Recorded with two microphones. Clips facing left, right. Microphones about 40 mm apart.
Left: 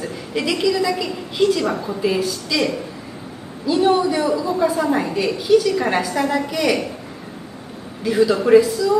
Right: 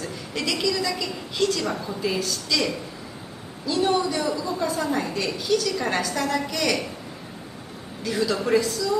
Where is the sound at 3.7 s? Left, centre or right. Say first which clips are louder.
Left 6 dB; centre.